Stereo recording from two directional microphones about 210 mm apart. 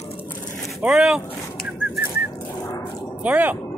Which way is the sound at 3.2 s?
10° right (ahead or behind).